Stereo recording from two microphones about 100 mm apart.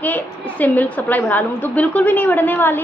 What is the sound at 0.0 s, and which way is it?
A woman's voice, 15° left (ahead or behind).